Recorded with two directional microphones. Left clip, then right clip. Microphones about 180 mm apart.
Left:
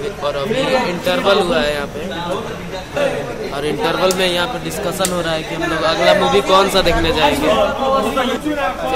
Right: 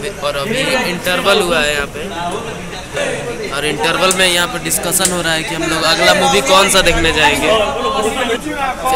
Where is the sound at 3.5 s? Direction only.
5° left (ahead or behind).